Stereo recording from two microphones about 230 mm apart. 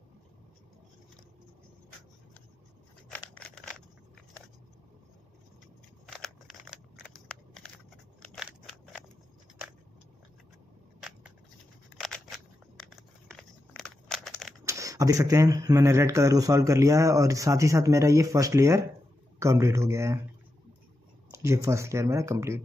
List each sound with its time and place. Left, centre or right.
3.1 s scissors: centre
6.0 s scissors: centre
11.0 s biting: centre
12.0 s a sound: centre
14.6 s speech: centre
21.3 s speech: centre